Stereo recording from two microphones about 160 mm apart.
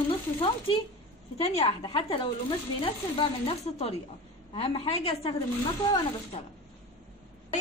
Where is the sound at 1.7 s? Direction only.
30° left (ahead or behind).